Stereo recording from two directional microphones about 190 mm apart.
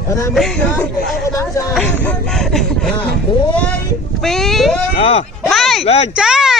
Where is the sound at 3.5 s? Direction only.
5° left (ahead or behind).